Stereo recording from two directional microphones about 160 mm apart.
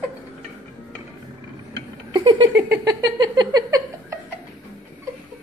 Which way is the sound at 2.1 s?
25° right (ahead or behind).